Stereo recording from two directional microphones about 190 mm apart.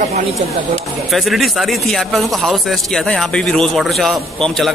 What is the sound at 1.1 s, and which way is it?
Speech, centre (ahead or behind).